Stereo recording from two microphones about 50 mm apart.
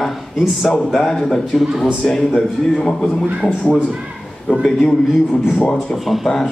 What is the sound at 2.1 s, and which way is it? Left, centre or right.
A man's voice, centre.